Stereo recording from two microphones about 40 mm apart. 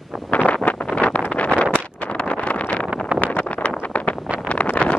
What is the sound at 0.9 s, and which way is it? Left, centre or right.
Vehicle, left.